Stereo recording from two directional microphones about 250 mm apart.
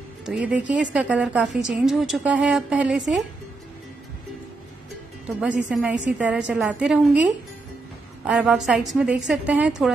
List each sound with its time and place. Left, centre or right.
0.2 s a woman's voice: centre
5.2 s a woman's voice: centre
8.3 s a woman's voice: centre